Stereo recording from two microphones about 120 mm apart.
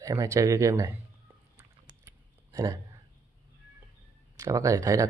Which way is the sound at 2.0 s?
25° right (ahead or behind).